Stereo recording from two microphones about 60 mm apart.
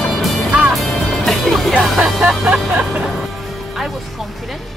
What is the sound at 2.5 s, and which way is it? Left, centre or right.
Music, right.